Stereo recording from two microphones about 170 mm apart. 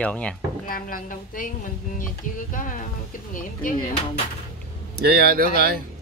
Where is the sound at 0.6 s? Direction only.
55° left (ahead or behind).